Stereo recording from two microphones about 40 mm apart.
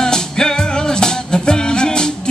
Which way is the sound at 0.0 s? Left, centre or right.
Centre.